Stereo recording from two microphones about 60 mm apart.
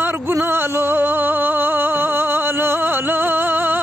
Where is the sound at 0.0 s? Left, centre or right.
Right.